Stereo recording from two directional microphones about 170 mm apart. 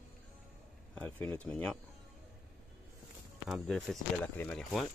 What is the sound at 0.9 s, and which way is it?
Speech, 10° left (ahead or behind).